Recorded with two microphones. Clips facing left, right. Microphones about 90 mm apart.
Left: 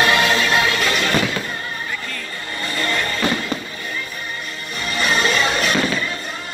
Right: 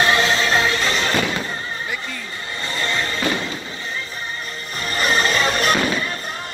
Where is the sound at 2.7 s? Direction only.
20° right (ahead or behind).